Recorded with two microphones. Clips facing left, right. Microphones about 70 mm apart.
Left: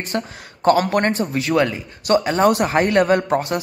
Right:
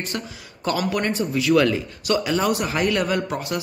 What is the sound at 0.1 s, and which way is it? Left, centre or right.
Speech, left.